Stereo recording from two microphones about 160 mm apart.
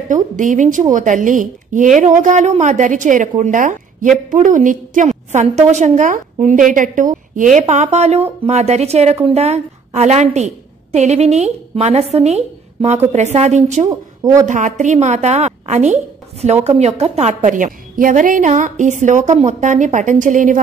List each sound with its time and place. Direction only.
0.1 s speech: 50° right (ahead or behind)
13.8 s speech: 25° right (ahead or behind)
14.4 s speech: 50° right (ahead or behind)